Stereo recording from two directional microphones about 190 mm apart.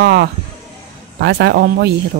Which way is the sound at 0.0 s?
60° right (ahead or behind).